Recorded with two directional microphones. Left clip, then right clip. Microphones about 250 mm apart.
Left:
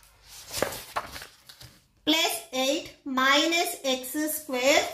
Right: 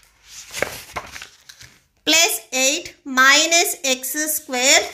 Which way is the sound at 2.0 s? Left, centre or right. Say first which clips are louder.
Right 8 dB; right.